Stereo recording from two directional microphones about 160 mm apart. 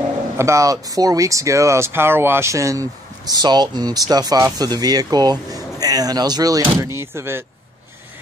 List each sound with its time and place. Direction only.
0.4 s speech: 20° right (ahead or behind)